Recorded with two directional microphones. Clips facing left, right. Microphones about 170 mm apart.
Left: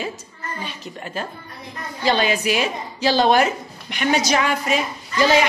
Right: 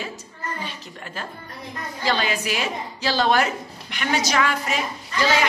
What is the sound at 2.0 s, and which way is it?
A woman's voice, 20° left (ahead or behind).